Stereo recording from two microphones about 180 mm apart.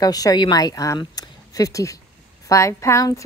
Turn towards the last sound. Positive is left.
turn(degrees=15)  # may be behind; listen again after turning